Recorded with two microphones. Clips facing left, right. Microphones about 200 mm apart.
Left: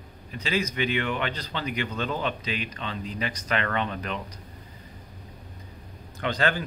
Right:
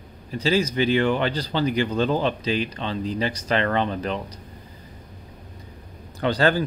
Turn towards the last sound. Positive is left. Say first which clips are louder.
# right 6 dB
turn(degrees=-35)  # may be behind; listen again after turning